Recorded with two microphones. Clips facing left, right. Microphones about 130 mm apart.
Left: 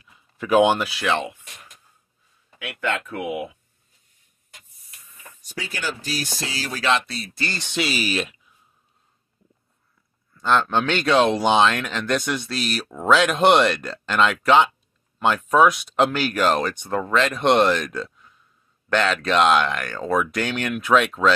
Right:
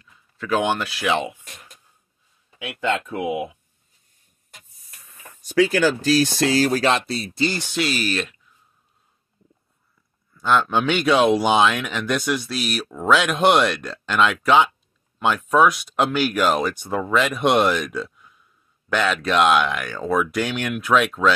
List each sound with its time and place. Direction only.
0.0 s a sound: 15° left (ahead or behind)
1.0 s speech: 15° right (ahead or behind)
2.6 s speech: 20° right (ahead or behind)
5.5 s speech: 90° right
6.5 s speech: 45° right (ahead or behind)
7.3 s speech: 15° right (ahead or behind)
7.6 s speech: centre (ahead or behind)
10.3 s speech: 5° right (ahead or behind)